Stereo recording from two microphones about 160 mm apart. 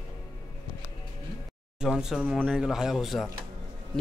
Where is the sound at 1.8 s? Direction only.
5° right (ahead or behind).